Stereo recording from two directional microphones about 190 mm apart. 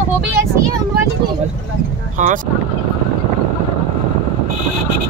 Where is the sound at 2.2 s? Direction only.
40° right (ahead or behind).